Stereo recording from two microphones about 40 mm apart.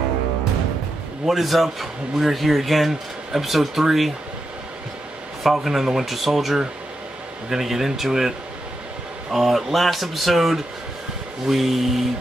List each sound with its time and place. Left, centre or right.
1.2 s speech: centre
5.4 s speech: centre
9.3 s speech: centre